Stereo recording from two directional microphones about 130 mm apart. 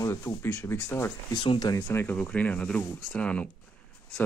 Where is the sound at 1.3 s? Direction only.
35° left (ahead or behind); by 3.5 s 10° left (ahead or behind).